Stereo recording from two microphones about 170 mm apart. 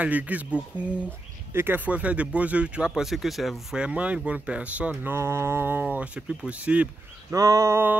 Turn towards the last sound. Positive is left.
turn(degrees=-15)  # may be behind; listen again after turning